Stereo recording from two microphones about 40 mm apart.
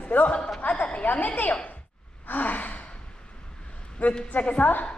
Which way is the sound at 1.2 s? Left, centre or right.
Left.